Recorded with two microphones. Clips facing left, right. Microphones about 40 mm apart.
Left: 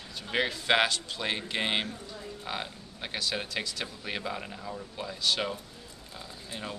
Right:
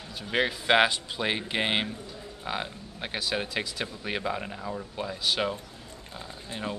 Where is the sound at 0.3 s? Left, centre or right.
Centre.